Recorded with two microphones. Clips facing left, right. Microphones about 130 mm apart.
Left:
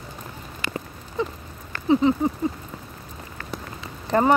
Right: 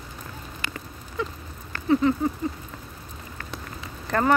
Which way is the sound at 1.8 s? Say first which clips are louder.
Left 2 dB; 20° left (ahead or behind).